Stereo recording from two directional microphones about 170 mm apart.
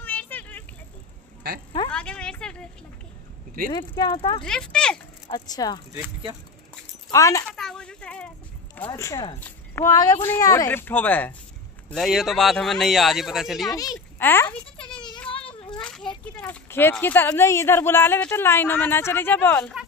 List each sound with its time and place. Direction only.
0.0 s vehicle: 10° left (ahead or behind)
1.9 s a sound: 5° left (ahead or behind)
3.7 s speech: 25° left (ahead or behind)
4.4 s speech: 5° left (ahead or behind)
5.3 s speech: 25° left (ahead or behind)
7.1 s speech: 20° left (ahead or behind)
7.4 s a sound: 5° left (ahead or behind)
8.9 s speech: 15° left (ahead or behind); by 13.7 s centre (ahead or behind)
13.7 s speech: 15° left (ahead or behind)
15.3 s children playing: 30° left (ahead or behind)
15.8 s a child's voice: 5° left (ahead or behind)